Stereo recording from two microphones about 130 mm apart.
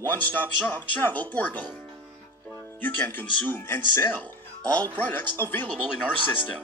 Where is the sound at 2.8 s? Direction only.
15° left (ahead or behind).